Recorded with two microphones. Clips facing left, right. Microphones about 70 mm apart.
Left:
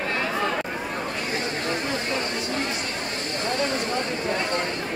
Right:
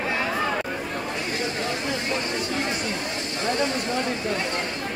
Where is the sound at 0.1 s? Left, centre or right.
Centre.